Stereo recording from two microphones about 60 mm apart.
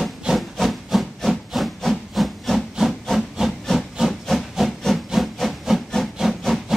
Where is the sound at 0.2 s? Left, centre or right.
Centre.